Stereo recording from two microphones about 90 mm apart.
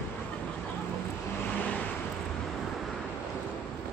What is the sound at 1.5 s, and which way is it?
Vehicle, 15° left (ahead or behind).